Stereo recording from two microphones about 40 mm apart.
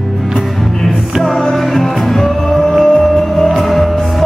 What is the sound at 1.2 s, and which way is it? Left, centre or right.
Music, centre.